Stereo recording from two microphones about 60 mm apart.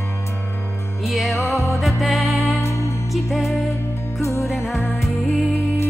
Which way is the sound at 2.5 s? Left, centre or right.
Left.